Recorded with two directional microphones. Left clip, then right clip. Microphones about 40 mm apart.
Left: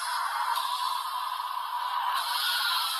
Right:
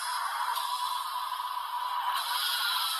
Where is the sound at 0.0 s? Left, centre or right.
Left.